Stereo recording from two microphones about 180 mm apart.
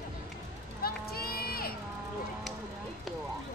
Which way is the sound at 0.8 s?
55° left (ahead or behind).